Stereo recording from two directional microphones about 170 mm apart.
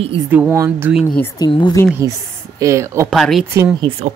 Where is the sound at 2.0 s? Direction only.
20° right (ahead or behind).